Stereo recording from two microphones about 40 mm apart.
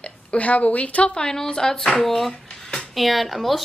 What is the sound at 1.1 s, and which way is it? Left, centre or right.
A woman's voice, centre.